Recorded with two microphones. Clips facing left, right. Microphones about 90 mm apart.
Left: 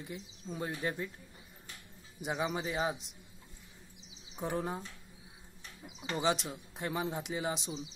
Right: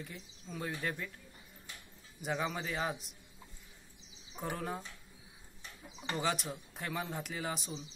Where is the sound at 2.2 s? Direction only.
20° left (ahead or behind).